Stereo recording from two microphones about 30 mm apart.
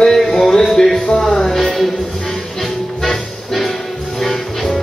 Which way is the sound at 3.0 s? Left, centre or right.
Centre.